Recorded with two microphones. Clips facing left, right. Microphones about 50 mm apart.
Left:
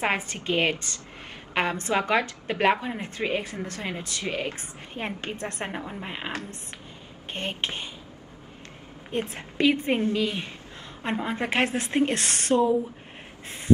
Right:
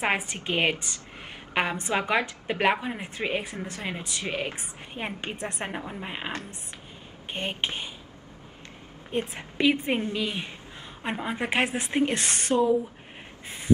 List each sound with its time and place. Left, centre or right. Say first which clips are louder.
0.0 s a woman's voice: even; centre
5.7 s speech: even; centre
7.3 s a woman's voice: even; centre
9.3 s a woman's voice: left 1 dB; centre